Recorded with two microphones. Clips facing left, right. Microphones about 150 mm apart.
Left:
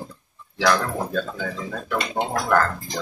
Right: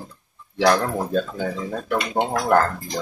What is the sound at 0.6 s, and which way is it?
Speech, 30° right (ahead or behind).